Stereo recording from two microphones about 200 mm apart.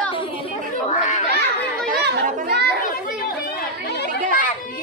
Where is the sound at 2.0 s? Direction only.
55° right (ahead or behind).